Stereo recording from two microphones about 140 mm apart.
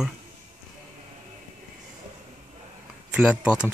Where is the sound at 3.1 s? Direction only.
10° right (ahead or behind).